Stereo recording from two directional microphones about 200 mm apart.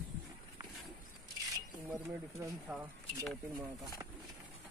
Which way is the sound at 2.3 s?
15° right (ahead or behind).